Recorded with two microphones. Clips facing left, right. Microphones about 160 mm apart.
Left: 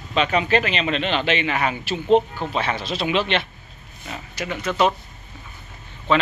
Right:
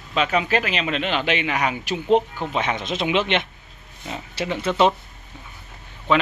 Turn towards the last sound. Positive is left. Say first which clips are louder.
# even
turn(degrees=-15)  # may be behind; listen again after turning